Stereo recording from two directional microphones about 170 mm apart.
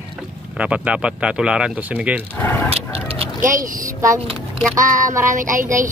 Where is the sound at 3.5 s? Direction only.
50° right (ahead or behind).